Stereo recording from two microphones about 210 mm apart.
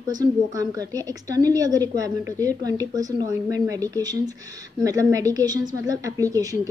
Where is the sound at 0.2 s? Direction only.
15° right (ahead or behind).